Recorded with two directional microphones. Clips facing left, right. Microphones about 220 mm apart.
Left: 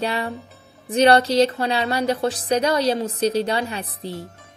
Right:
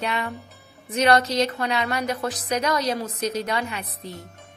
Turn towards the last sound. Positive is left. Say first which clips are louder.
# left 5 dB
turn(degrees=30)  # may be behind; listen again after turning